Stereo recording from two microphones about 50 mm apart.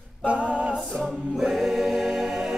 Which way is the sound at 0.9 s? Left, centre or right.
Centre.